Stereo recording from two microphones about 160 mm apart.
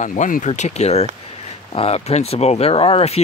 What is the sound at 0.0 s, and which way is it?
Speech, 50° left (ahead or behind).